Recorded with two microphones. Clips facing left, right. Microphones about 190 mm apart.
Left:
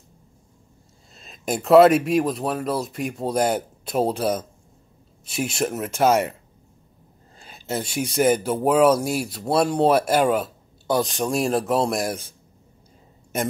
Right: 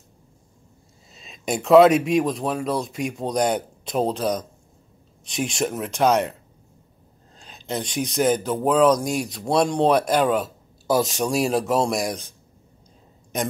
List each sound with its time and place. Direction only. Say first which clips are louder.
1.1 s speech: even; centre (ahead or behind)
7.3 s speech: left 1 dB; 5° left (ahead or behind)